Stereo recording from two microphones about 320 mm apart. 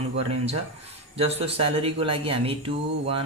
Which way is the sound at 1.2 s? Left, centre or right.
Centre.